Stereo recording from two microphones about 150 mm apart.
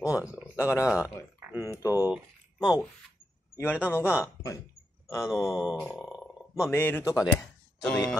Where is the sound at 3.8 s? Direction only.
15° left (ahead or behind).